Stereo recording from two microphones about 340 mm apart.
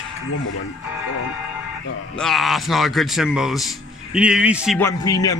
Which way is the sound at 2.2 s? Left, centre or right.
Centre.